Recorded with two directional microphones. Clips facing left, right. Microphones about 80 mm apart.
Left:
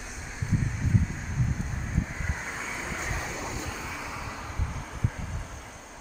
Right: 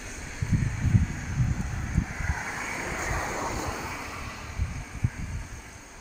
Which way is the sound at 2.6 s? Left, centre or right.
Centre.